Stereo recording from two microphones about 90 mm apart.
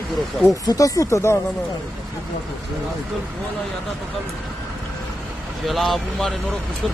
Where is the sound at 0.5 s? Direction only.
40° left (ahead or behind).